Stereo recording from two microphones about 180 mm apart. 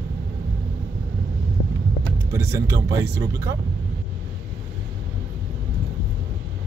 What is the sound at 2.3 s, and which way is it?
Speech, 15° right (ahead or behind).